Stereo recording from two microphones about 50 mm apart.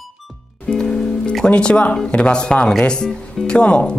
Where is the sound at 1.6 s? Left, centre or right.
Left.